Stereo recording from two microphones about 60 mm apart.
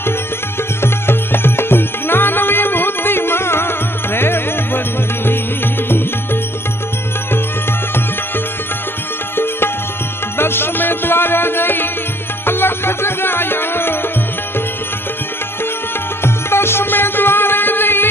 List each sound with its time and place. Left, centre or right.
0.8 s music: left
10.3 s music: left
16.4 s music: left